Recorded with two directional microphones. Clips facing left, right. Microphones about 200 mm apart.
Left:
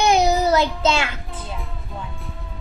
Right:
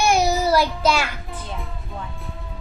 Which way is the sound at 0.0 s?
20° left (ahead or behind).